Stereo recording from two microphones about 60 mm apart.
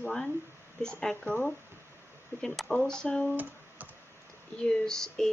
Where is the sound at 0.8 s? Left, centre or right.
Centre.